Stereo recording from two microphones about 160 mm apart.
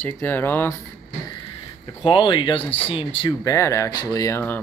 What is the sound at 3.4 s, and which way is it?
Speech, 20° left (ahead or behind).